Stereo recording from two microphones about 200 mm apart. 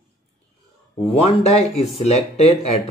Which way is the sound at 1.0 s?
30° left (ahead or behind).